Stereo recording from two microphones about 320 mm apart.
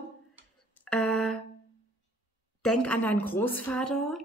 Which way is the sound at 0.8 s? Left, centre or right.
Centre.